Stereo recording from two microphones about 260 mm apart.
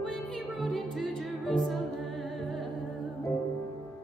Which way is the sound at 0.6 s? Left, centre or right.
Centre.